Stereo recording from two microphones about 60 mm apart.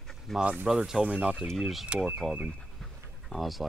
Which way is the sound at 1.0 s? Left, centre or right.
Right.